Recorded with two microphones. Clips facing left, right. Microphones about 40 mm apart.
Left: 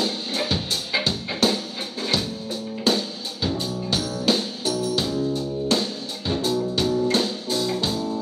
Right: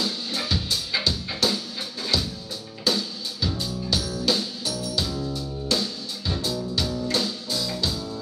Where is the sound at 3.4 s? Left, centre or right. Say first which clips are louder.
Left 3 dB; left.